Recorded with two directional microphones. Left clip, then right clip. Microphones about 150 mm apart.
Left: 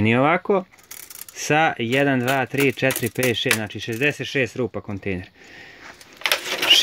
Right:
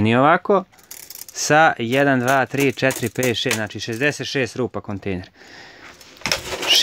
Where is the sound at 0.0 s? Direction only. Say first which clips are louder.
Right 3 dB; centre (ahead or behind).